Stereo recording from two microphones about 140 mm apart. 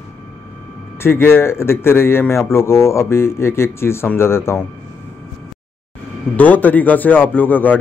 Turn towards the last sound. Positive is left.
turn(degrees=15)  # may be behind; listen again after turning